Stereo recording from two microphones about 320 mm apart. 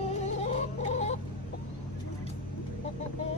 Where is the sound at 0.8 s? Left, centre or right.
Left.